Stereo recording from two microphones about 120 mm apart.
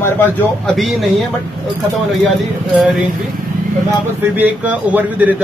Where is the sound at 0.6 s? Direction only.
Centre (ahead or behind).